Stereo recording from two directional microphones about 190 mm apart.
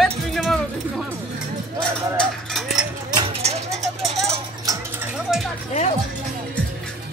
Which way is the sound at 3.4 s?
35° right (ahead or behind).